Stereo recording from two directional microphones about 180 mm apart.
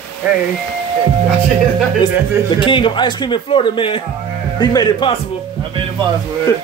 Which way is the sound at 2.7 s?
30° left (ahead or behind).